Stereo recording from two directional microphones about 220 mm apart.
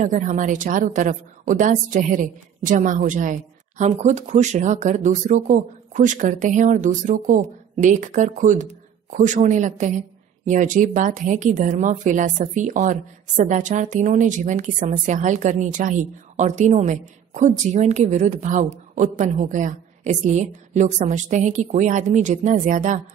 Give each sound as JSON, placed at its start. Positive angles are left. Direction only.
{"t": 0.0, "sound": "speech", "side_deg": -35}